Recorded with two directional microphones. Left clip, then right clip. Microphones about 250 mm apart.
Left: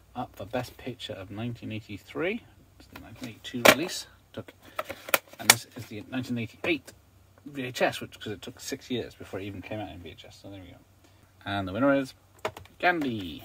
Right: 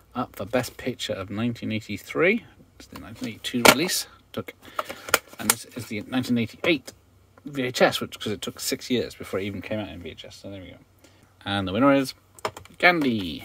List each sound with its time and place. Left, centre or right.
0.1 s speech: right
11.4 s speech: right